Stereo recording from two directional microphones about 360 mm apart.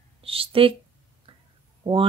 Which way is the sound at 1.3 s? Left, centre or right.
Centre.